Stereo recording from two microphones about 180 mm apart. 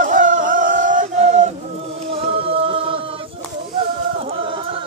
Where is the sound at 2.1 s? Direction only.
30° right (ahead or behind).